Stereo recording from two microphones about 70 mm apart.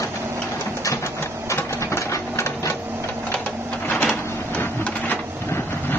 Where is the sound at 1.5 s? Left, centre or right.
Left.